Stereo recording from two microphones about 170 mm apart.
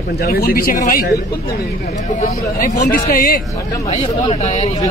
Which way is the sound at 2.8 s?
55° left (ahead or behind).